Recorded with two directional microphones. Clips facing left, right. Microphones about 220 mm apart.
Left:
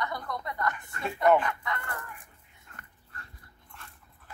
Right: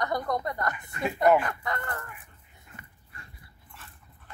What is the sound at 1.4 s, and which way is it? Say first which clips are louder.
Chicken: right 1 dB; 35° right (ahead or behind).